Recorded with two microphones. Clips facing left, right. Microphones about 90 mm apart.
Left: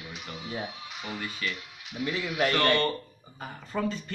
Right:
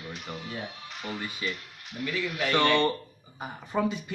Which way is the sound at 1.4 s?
20° right (ahead or behind).